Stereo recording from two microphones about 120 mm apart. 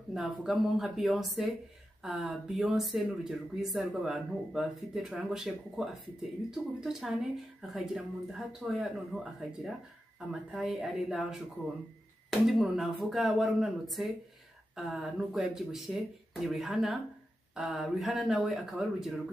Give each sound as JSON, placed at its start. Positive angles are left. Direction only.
{"t": 0.1, "sound": "speech", "side_deg": -5}